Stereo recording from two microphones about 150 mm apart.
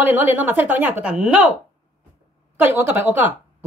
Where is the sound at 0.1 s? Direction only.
10° right (ahead or behind).